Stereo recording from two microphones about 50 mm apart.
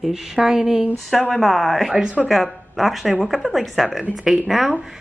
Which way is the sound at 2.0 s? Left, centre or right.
Centre.